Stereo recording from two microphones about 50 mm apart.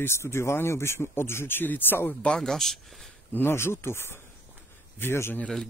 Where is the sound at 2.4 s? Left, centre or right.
Centre.